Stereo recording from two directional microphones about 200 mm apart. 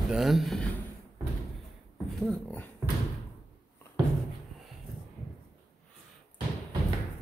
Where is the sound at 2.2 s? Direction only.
5° left (ahead or behind).